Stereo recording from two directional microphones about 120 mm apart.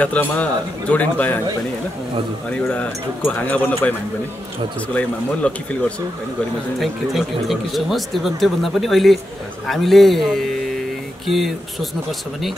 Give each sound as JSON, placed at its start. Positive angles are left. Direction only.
{"t": 0.0, "sound": "a man's voice", "side_deg": 15}
{"t": 2.5, "sound": "a man's voice", "side_deg": 10}
{"t": 4.9, "sound": "a man's voice", "side_deg": 10}
{"t": 6.8, "sound": "speech", "side_deg": 0}